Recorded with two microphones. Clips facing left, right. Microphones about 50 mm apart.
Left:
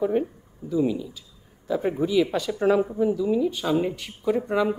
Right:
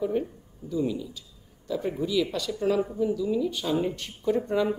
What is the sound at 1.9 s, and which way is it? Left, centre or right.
A man's voice, left.